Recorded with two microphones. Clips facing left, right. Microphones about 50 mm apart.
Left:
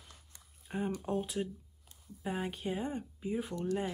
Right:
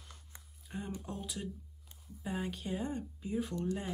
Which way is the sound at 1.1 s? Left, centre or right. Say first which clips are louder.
Left 7 dB; left.